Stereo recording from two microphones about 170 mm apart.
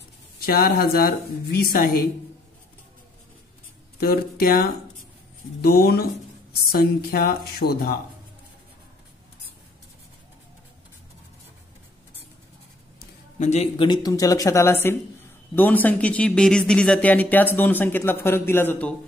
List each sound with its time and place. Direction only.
0.4 s a woman's voice: 60° left (ahead or behind)
4.0 s a woman's voice: 65° left (ahead or behind)
13.4 s speech: 40° left (ahead or behind)
13.7 s speech: 25° left (ahead or behind)